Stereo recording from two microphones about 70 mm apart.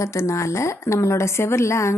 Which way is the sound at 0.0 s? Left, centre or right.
Left.